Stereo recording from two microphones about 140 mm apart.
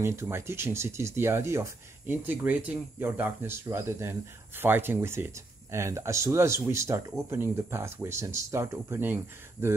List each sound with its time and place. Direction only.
0.0 s speech: 20° right (ahead or behind)